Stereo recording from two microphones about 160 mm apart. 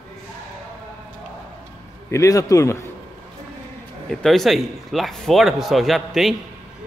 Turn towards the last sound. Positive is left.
turn(degrees=0)  # may be behind; listen again after turning